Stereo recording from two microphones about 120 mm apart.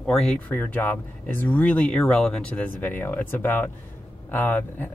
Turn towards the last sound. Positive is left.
turn(degrees=15)  # may be behind; listen again after turning